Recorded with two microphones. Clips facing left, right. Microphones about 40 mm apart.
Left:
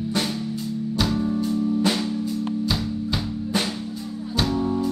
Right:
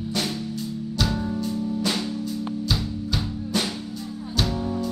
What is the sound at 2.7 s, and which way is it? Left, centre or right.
Music, left.